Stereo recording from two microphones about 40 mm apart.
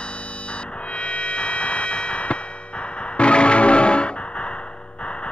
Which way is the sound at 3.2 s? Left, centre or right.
Left.